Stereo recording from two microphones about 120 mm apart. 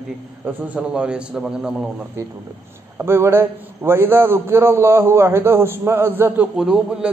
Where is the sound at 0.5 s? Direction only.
15° right (ahead or behind).